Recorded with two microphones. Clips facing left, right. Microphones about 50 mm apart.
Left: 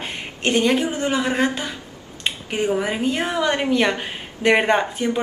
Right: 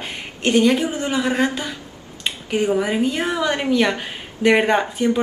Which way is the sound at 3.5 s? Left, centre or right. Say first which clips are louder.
Right 1 dB; centre.